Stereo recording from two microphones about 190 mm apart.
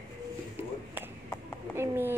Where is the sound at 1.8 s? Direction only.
10° right (ahead or behind).